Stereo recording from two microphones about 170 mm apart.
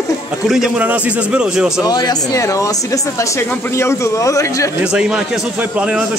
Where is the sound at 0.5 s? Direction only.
5° right (ahead or behind).